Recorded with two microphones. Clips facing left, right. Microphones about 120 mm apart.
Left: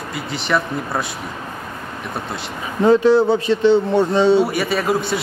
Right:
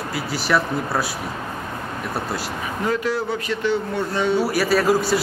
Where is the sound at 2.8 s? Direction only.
25° left (ahead or behind).